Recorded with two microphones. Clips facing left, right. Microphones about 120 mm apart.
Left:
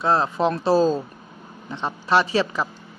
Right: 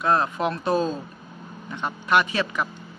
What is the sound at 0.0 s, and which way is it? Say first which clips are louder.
A man's voice: left 2 dB; 30° left (ahead or behind).